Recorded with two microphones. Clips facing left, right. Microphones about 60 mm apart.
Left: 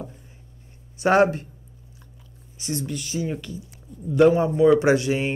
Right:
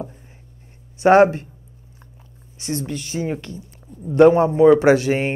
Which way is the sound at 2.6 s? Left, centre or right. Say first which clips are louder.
Right 3 dB; right.